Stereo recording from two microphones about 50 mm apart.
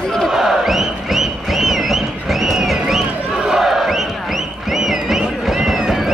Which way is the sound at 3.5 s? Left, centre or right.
Centre.